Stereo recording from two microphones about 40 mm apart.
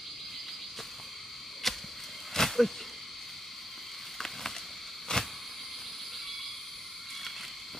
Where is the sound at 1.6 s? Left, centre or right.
Centre.